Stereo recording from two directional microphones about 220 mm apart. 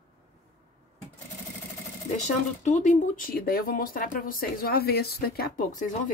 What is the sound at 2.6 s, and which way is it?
Speech, 35° left (ahead or behind).